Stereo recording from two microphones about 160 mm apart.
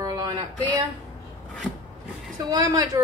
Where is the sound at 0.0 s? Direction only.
25° right (ahead or behind).